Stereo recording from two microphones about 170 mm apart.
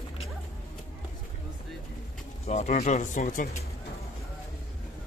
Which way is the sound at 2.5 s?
40° left (ahead or behind).